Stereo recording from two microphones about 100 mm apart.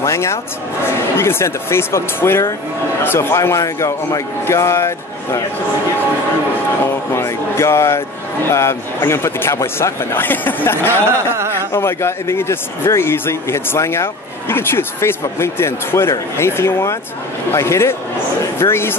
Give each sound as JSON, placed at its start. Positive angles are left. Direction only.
{"t": 0.0, "sound": "vehicle", "side_deg": 30}
{"t": 1.1, "sound": "a man's voice", "side_deg": 25}
{"t": 6.8, "sound": "a man's voice", "side_deg": 25}